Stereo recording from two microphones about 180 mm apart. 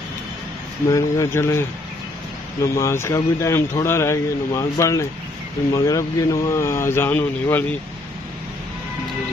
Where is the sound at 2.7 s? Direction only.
15° left (ahead or behind).